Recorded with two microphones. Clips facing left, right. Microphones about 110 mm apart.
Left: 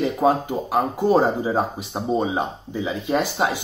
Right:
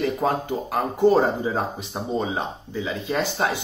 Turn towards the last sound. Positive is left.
turn(degrees=15)  # may be behind; listen again after turning